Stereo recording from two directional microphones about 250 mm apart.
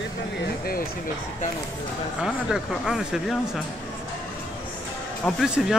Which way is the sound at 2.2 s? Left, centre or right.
Centre.